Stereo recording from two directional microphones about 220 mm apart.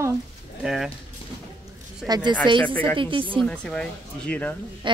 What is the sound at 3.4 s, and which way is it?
Speech, 5° left (ahead or behind).